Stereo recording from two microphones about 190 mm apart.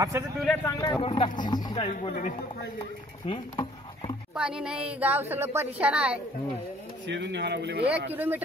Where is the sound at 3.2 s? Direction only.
25° left (ahead or behind).